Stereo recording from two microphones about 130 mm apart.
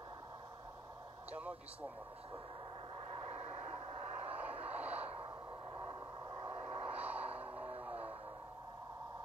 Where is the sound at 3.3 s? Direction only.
55° right (ahead or behind).